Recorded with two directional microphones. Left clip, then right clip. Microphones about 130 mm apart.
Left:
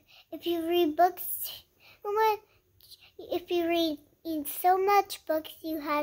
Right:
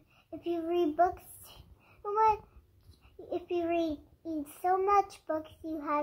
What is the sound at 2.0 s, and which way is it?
A child's voice, 20° left (ahead or behind).